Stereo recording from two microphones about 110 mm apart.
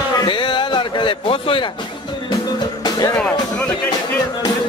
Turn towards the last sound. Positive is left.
turn(degrees=40)  # may be behind; listen again after turning